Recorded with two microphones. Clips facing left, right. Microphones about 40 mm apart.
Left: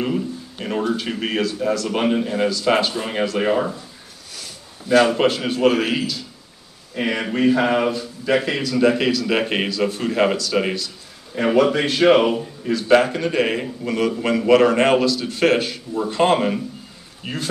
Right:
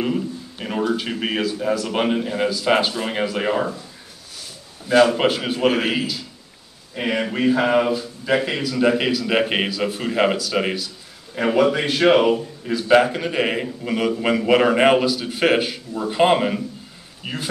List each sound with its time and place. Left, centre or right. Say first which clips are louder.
0.0 s a man's voice: even; centre
4.8 s a man's voice: even; centre